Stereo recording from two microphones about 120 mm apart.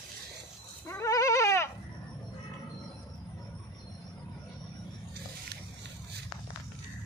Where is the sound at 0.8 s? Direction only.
25° left (ahead or behind).